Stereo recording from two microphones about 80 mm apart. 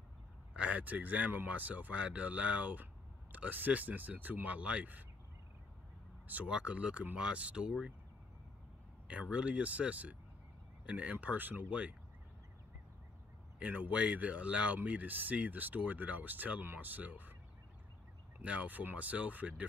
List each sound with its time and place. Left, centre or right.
0.6 s speech: centre
6.2 s speech: centre
9.0 s speech: centre
13.6 s speech: centre
18.4 s speech: centre